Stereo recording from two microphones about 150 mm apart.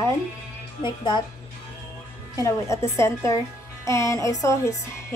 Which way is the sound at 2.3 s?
20° left (ahead or behind).